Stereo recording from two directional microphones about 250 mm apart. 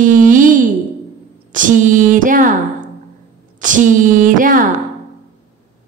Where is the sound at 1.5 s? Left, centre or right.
Right.